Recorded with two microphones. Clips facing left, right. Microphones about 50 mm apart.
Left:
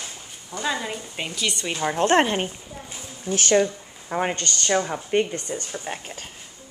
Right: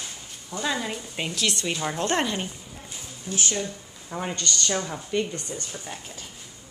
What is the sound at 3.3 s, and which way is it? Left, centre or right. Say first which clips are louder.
Speech: left 9 dB; left.